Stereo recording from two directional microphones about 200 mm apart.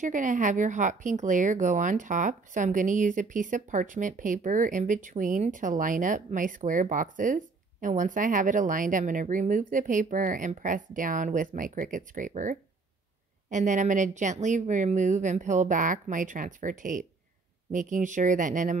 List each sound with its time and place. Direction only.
0.0 s speech: 40° right (ahead or behind)